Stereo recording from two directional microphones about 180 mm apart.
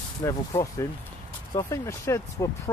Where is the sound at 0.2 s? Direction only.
20° left (ahead or behind).